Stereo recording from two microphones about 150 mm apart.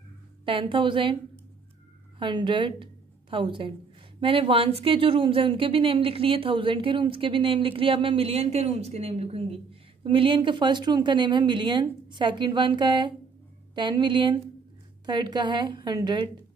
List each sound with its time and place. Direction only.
0.5 s a woman's voice: 35° right (ahead or behind)
2.1 s a woman's voice: 30° right (ahead or behind)